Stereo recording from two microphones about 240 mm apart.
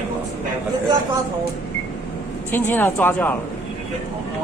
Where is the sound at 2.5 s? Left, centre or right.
Centre.